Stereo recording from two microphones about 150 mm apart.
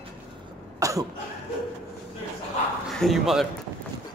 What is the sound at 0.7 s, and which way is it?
Cough, 20° right (ahead or behind).